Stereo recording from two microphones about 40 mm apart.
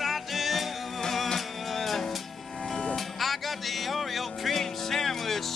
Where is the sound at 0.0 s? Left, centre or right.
Centre.